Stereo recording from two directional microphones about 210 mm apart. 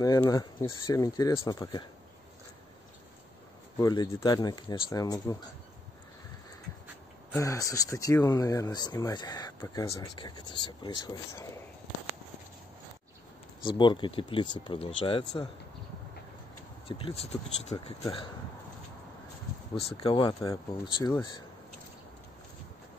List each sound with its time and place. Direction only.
0.0 s speech: 15° left (ahead or behind)
3.7 s speech: 20° left (ahead or behind)
7.3 s speech: 15° left (ahead or behind)
13.7 s speech: 20° left (ahead or behind)
16.8 s speech: 25° left (ahead or behind)
19.7 s speech: 25° left (ahead or behind)